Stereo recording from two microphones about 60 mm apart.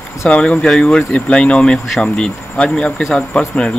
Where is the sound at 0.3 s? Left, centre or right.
Centre.